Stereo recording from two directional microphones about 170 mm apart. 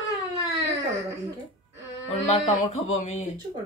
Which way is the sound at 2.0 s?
40° left (ahead or behind).